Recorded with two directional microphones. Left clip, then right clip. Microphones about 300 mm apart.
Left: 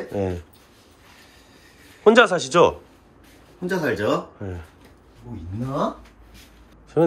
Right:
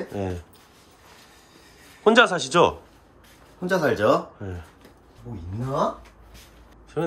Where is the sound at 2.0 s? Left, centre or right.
Centre.